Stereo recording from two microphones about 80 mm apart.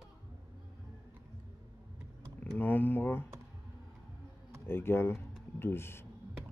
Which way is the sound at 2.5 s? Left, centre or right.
Left.